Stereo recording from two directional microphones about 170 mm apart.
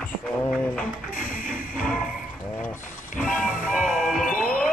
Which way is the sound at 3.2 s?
5° left (ahead or behind).